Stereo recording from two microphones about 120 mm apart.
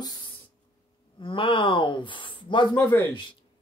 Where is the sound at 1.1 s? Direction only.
45° left (ahead or behind).